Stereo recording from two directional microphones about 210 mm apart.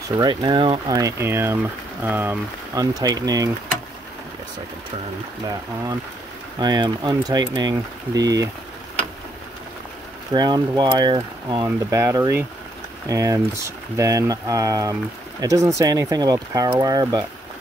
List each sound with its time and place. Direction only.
0.2 s speech: 20° right (ahead or behind)
6.6 s speech: 20° right (ahead or behind)
10.3 s speech: 20° right (ahead or behind)